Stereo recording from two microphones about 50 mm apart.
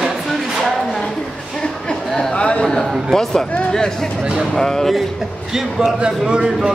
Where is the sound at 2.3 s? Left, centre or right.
Left.